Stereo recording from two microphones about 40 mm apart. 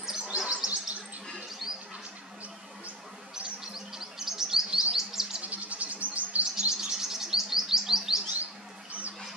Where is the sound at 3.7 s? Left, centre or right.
Centre.